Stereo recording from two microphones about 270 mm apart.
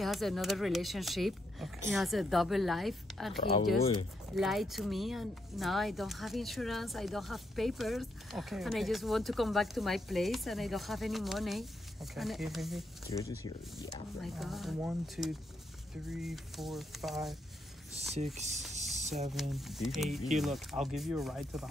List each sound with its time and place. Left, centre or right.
0.0 s speech: centre
4.4 s speech: centre
13.1 s speech: centre
14.2 s speech: centre
18.1 s speech: right
18.9 s a sound: right
19.5 s speech: centre